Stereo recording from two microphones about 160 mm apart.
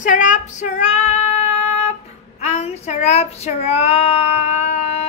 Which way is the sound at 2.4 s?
40° left (ahead or behind).